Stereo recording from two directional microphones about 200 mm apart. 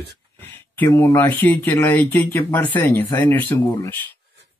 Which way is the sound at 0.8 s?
10° left (ahead or behind).